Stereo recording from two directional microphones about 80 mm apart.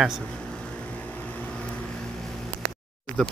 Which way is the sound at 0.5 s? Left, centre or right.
Centre.